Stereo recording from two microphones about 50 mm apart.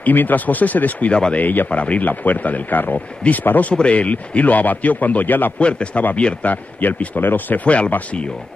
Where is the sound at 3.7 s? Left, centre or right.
Left.